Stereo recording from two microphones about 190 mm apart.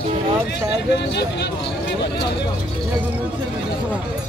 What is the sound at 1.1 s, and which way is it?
Speech, 65° left (ahead or behind).